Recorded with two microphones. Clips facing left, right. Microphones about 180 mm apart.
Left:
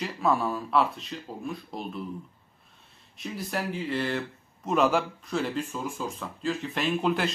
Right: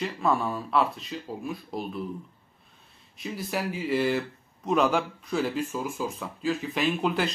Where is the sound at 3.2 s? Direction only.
Centre (ahead or behind).